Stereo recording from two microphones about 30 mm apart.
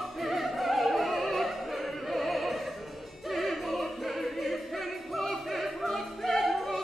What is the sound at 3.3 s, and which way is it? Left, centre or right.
Music, centre.